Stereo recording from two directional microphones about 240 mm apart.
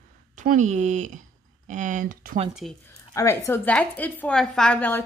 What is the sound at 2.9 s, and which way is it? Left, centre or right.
Speech, centre.